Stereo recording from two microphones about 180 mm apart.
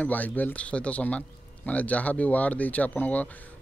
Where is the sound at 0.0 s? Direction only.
10° left (ahead or behind).